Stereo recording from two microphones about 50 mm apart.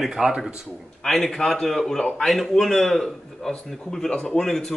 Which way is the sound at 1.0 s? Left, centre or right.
Centre.